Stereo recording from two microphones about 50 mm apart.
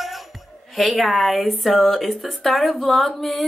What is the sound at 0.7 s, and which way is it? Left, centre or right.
Speech, centre.